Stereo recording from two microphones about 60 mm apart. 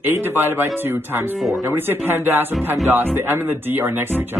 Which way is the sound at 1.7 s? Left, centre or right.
Right.